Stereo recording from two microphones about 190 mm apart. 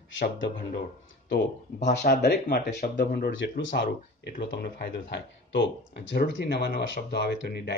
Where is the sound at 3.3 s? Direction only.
80° left.